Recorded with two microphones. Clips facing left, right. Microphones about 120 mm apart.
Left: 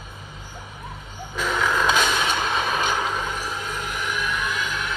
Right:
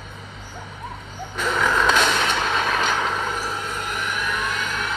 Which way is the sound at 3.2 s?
45° right (ahead or behind).